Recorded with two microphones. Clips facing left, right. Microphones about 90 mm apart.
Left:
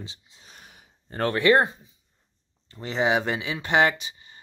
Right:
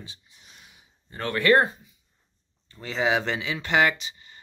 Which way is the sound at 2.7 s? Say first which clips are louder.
Left 1 dB; 25° left (ahead or behind).